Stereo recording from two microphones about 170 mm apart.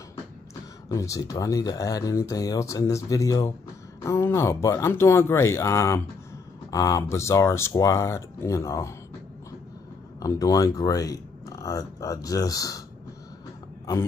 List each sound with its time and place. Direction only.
0.8 s speech: 20° left (ahead or behind)
10.2 s speech: 20° left (ahead or behind)